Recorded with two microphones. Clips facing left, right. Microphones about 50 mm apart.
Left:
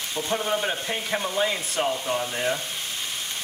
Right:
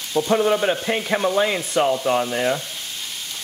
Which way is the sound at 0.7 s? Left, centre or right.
Right.